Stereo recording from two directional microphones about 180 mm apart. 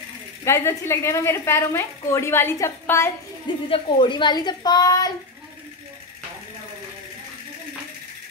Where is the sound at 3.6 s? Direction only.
30° left (ahead or behind).